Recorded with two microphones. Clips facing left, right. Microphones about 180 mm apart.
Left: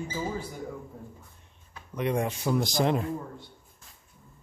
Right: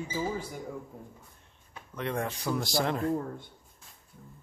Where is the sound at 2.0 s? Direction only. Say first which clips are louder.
Left 5 dB; 15° left (ahead or behind).